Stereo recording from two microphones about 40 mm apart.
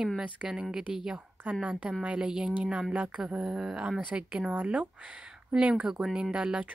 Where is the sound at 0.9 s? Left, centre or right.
Centre.